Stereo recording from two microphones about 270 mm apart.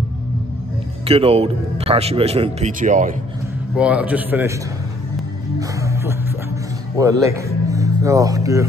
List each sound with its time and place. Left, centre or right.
1.0 s speech: right
3.7 s a man's voice: centre
5.6 s music: centre
7.0 s speech: centre